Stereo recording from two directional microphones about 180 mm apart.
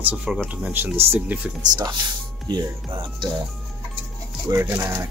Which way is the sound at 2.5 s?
25° right (ahead or behind).